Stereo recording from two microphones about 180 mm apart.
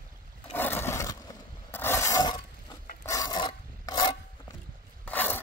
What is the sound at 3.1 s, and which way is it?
Filing, 20° left (ahead or behind).